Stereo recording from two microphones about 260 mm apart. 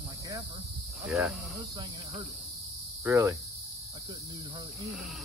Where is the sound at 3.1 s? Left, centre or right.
Centre.